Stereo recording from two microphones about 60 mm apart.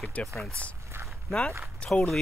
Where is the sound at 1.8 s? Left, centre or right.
Centre.